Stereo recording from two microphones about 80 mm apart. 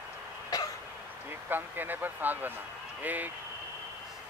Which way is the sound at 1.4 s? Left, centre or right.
Right.